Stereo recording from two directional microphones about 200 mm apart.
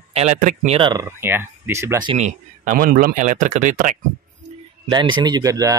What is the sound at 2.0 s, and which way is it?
Speech, 35° right (ahead or behind).